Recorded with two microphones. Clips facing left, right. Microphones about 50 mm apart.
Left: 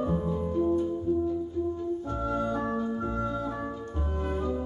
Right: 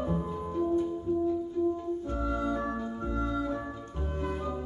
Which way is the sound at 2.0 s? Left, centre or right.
Left.